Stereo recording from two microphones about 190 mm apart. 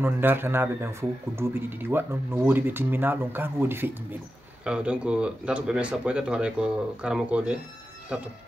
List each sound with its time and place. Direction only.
0.0 s speech: 10° right (ahead or behind)